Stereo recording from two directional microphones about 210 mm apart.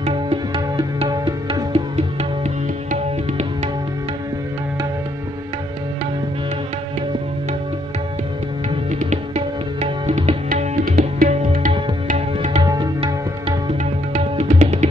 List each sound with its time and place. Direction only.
0.0 s music: 25° right (ahead or behind)
9.1 s music: 35° right (ahead or behind)
12.6 s music: 20° right (ahead or behind)